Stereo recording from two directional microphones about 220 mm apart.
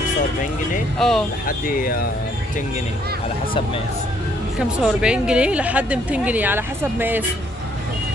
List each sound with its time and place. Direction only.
0.9 s a woman's voice: centre (ahead or behind)
1.7 s speech: 40° left (ahead or behind)
4.6 s a woman's voice: 5° right (ahead or behind)